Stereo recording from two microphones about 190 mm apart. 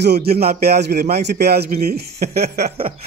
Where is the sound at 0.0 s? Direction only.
60° right (ahead or behind).